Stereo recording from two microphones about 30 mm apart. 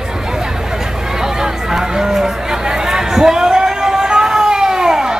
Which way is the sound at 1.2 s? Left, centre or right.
Centre.